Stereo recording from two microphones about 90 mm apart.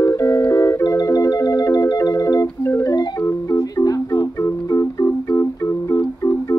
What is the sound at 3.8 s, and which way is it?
Music, 40° left (ahead or behind).